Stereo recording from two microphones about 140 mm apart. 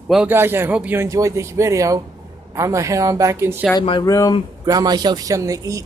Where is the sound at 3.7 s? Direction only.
35° left (ahead or behind).